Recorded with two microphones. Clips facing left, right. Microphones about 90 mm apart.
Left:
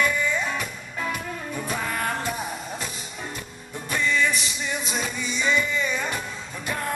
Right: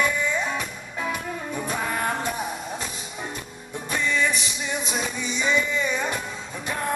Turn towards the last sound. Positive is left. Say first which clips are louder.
# right 1 dB
turn(degrees=-5)  # may be behind; listen again after turning